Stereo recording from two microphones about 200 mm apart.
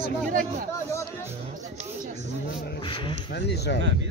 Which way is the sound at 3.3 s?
55° left (ahead or behind).